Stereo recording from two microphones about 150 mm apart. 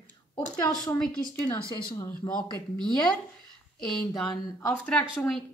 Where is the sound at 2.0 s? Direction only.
10° left (ahead or behind).